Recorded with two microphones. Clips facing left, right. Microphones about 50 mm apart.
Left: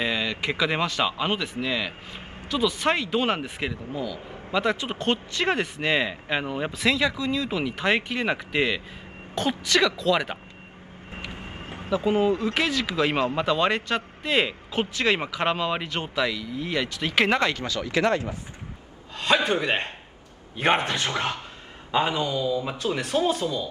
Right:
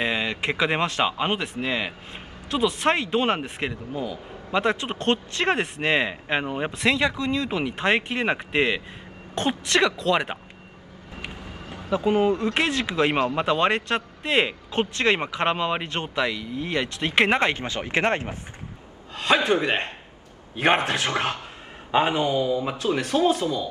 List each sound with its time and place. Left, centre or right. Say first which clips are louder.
0.0 s speech: right 1 dB; right
1.4 s speech: right 1 dB; right
6.0 s speech: right 2 dB; centre
6.8 s speech: right 1 dB; right
7.7 s speech: right 2 dB; right
11.3 s vehicle: left 1 dB; left
11.9 s speech: right 1 dB; right
15.2 s speech: right 1 dB; right
20.9 s speech: right 2 dB; right
22.8 s speech: right 2 dB; right